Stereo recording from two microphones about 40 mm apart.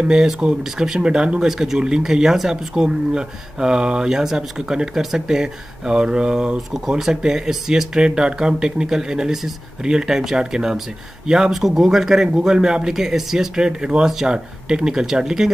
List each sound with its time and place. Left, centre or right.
0.0 s speech: centre
8.0 s speech: right